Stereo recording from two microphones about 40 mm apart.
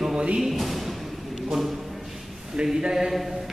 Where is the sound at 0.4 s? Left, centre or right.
Centre.